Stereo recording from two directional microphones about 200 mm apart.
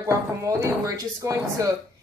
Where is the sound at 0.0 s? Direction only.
15° right (ahead or behind).